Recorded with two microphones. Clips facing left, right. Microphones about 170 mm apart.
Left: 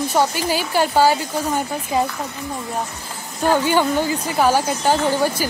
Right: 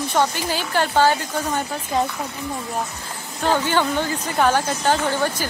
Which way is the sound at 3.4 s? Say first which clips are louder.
Left 3 dB; 10° left (ahead or behind).